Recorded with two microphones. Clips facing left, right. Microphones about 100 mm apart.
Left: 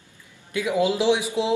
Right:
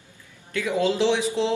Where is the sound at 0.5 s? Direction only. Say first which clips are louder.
Left 1 dB; 15° left (ahead or behind).